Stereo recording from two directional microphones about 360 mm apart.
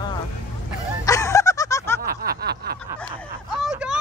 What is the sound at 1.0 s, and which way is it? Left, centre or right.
Music, centre.